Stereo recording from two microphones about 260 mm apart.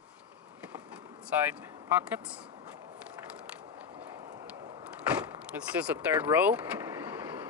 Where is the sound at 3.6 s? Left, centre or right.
Right.